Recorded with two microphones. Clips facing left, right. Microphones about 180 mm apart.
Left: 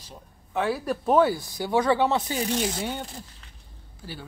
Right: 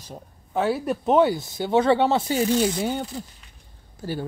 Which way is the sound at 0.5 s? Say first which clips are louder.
Right 3 dB; 25° right (ahead or behind).